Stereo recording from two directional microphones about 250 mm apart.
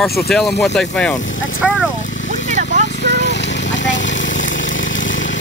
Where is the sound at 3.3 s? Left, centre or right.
Left.